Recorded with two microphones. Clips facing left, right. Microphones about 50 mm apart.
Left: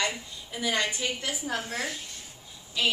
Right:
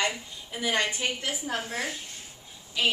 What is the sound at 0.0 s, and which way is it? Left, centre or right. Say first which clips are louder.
A woman's voice: right 1 dB; right.